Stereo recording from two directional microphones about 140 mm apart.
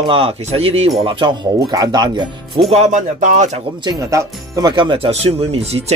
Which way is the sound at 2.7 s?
55° right (ahead or behind).